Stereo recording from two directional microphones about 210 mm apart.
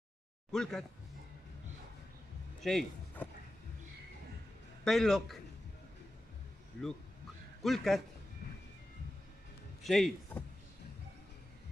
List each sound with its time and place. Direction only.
0.5 s a man's voice: centre (ahead or behind)
2.6 s a sound: centre (ahead or behind)
4.8 s a man's voice: centre (ahead or behind)
7.6 s a man's voice: centre (ahead or behind)
9.8 s a man's voice: centre (ahead or behind)